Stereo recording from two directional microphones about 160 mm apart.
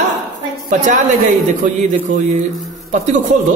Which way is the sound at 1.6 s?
50° right (ahead or behind).